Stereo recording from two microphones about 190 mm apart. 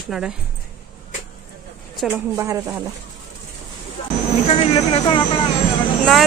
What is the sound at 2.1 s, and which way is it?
Speech, 15° right (ahead or behind).